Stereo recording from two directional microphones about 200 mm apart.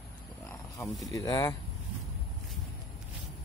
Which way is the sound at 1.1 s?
20° left (ahead or behind).